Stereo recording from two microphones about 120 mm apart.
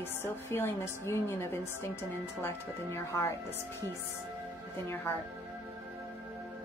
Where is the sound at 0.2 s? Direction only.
20° left (ahead or behind).